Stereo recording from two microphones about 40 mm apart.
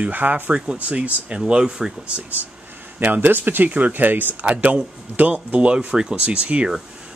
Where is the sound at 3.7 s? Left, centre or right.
Right.